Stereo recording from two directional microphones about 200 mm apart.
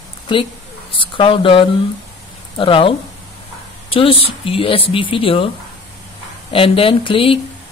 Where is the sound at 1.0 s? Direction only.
25° left (ahead or behind).